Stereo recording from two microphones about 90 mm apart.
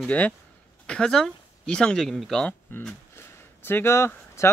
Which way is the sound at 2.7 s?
25° left (ahead or behind).